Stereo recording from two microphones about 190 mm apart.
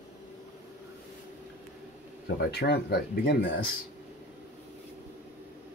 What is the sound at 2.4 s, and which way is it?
Speech, 60° left (ahead or behind).